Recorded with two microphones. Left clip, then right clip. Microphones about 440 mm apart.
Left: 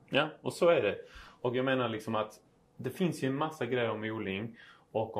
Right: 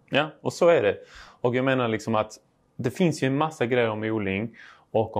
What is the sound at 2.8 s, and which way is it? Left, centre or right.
Speech, right.